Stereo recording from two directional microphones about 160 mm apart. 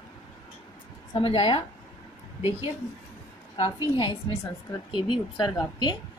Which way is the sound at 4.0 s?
30° left (ahead or behind).